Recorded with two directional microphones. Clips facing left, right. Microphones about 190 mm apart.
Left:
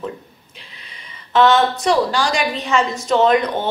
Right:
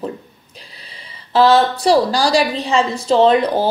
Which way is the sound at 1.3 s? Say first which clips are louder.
Right 2 dB; 35° right (ahead or behind).